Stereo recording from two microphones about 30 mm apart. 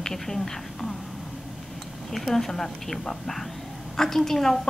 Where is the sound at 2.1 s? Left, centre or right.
Centre.